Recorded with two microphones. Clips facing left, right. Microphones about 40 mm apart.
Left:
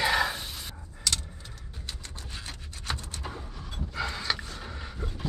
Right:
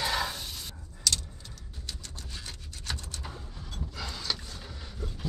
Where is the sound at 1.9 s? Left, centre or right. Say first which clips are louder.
Left 1 dB; left.